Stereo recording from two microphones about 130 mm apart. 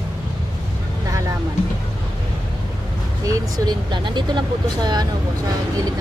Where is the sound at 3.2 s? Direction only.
30° right (ahead or behind).